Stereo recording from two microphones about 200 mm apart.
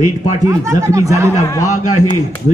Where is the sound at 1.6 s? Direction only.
90° left.